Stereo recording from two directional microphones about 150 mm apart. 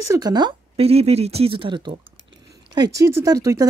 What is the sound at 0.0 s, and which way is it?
Speech, 20° right (ahead or behind).